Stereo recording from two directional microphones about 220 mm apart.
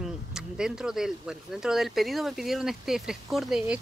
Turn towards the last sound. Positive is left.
turn(degrees=0)  # may be behind; listen again after turning